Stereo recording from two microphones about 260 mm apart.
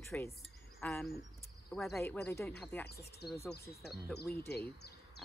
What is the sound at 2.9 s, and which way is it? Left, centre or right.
Speech, left.